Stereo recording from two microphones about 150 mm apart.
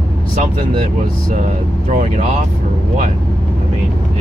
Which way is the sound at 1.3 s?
55° right (ahead or behind).